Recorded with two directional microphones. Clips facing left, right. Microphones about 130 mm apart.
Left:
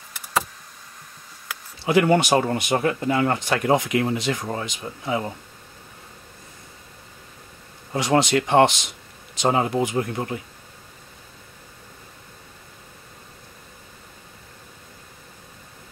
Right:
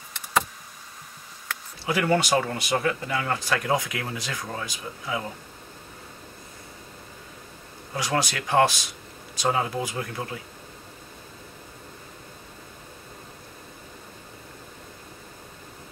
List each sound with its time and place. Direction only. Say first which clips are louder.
0.1 s a sound: even; 5° left (ahead or behind)
1.9 s speech: left 5 dB; 20° left (ahead or behind)
7.9 s speech: left 8 dB; 25° left (ahead or behind)